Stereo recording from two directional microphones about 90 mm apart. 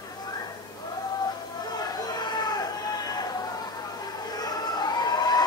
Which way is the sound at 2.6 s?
45° left (ahead or behind).